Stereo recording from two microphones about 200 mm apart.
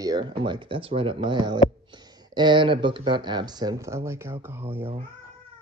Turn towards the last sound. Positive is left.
turn(degrees=-10)  # may be behind; listen again after turning